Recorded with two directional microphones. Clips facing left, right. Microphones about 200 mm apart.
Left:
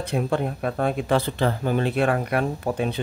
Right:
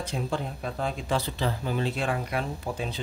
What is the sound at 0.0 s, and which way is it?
Speech, 60° left (ahead or behind).